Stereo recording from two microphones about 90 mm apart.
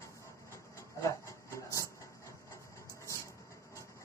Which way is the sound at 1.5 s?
35° left (ahead or behind).